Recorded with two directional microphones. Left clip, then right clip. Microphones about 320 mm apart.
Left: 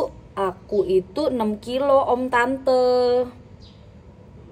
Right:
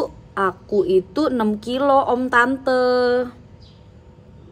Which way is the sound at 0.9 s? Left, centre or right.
Centre.